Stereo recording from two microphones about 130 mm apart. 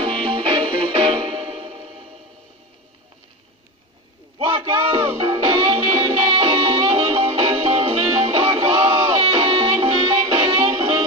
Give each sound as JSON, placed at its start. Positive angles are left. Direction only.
{"t": 0.0, "sound": "music", "side_deg": -40}
{"t": 4.4, "sound": "a sound", "side_deg": -40}
{"t": 5.1, "sound": "music", "side_deg": -40}